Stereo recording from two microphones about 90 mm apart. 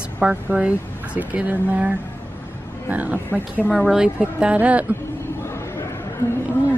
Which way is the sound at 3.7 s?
5° right (ahead or behind).